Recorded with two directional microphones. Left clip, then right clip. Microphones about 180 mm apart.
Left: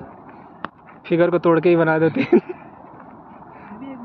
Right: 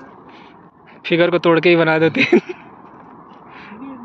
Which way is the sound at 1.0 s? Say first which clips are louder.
Right 2 dB; 5° right (ahead or behind).